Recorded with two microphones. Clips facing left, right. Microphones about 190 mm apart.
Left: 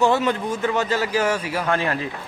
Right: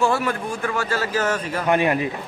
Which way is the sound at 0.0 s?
20° left (ahead or behind).